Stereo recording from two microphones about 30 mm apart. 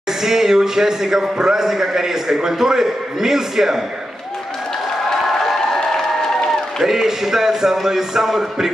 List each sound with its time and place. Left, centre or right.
0.2 s a man's voice: centre
5.1 s a sound: centre
6.8 s a man's voice: centre